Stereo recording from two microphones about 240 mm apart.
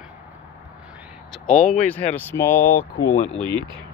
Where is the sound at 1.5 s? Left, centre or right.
Left.